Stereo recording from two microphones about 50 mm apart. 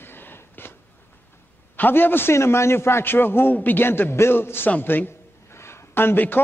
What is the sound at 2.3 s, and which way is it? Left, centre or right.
Speech, left.